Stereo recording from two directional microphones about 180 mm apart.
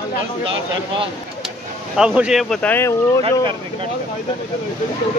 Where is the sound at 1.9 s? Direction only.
5° right (ahead or behind); by 3.2 s 15° left (ahead or behind).